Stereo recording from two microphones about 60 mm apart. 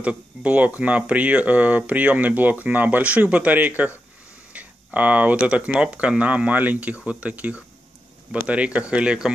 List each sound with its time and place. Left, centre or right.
0.0 s speech: right